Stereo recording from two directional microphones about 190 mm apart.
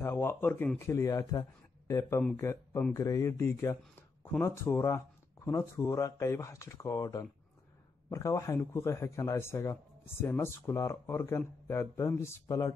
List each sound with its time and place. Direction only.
0.0 s speech: 10° left (ahead or behind)